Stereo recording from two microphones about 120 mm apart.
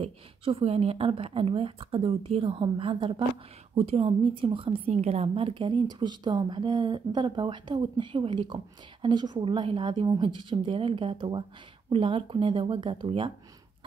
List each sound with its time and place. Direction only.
0.0 s a woman's voice: 55° right (ahead or behind)
3.7 s a woman's voice: 55° right (ahead or behind)
4.9 s a woman's voice: 65° right (ahead or behind); by 13.3 s 45° right (ahead or behind)